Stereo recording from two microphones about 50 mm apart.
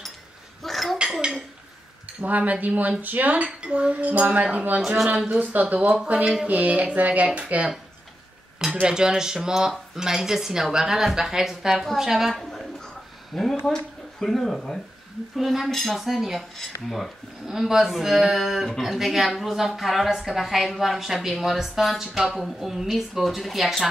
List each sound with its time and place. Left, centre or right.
0.6 s dishes: centre
2.2 s speech: right
5.4 s speech: right
8.8 s speech: centre
15.3 s speech: centre